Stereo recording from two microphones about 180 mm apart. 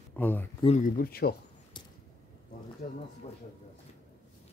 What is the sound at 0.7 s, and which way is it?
Speech, 50° left (ahead or behind).